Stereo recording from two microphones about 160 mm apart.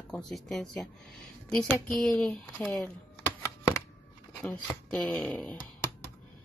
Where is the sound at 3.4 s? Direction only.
20° left (ahead or behind).